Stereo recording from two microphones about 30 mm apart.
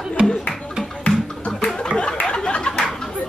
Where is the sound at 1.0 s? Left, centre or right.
Left.